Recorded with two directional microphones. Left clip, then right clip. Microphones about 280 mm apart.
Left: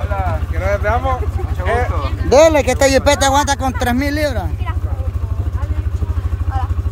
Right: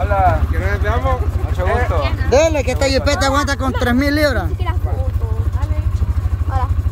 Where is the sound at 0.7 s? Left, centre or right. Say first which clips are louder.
Left 5 dB; centre.